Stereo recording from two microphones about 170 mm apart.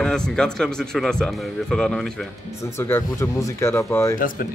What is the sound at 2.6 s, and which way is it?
Speech, 15° left (ahead or behind).